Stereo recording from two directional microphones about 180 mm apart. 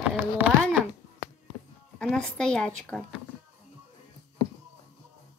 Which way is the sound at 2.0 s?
5° left (ahead or behind).